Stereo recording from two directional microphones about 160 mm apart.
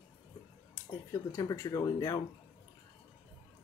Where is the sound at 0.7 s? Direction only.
20° left (ahead or behind).